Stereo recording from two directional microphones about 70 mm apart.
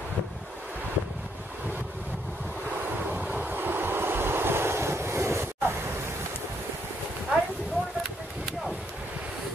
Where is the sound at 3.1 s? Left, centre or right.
Right.